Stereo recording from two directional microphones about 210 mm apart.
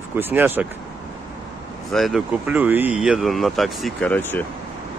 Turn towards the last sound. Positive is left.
turn(degrees=10)  # may be behind; listen again after turning